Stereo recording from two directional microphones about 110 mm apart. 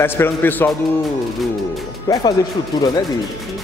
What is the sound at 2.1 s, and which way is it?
Speech, 35° left (ahead or behind).